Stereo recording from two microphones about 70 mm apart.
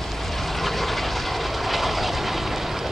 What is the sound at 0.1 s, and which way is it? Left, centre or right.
Train, centre.